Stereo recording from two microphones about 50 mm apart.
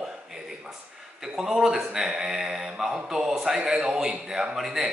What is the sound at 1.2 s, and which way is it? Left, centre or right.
A man's voice, centre.